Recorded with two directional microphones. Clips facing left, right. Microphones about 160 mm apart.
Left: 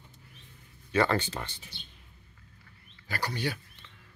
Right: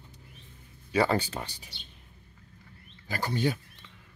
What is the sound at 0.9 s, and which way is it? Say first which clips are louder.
Speech: right 1 dB; 10° right (ahead or behind).